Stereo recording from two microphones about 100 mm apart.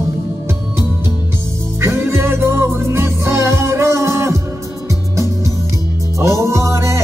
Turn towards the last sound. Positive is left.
turn(degrees=-30)  # may be behind; listen again after turning